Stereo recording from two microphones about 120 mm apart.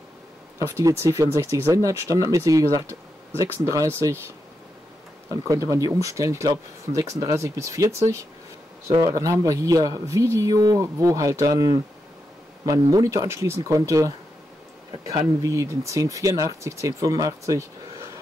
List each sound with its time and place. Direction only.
0.6 s speech: 25° right (ahead or behind)
5.3 s speech: 25° right (ahead or behind)